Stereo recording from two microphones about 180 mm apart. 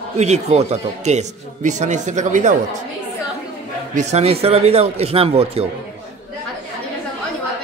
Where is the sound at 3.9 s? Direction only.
40° right (ahead or behind).